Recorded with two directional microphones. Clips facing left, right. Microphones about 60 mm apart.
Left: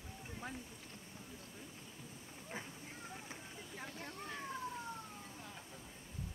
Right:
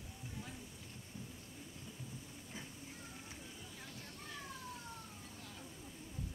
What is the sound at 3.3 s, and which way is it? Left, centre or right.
Boat, left.